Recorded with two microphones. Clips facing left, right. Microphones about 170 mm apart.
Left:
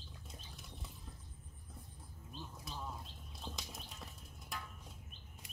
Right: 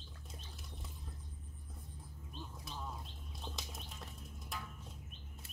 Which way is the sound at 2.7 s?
Centre (ahead or behind).